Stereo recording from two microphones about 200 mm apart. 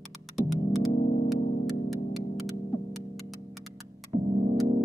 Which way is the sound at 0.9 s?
40° left (ahead or behind).